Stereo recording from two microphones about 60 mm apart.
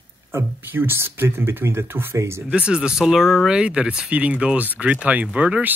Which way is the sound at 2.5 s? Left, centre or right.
Centre.